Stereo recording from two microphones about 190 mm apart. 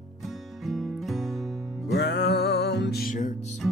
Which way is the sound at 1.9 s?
60° left (ahead or behind).